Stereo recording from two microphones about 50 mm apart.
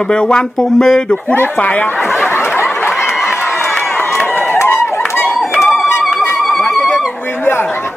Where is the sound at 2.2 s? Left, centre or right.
Left.